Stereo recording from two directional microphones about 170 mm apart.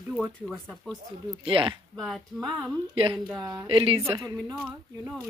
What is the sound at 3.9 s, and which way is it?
Speech, 20° right (ahead or behind).